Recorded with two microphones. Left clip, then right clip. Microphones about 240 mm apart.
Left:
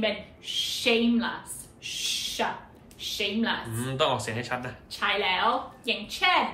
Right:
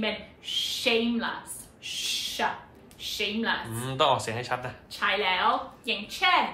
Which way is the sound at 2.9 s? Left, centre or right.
Centre.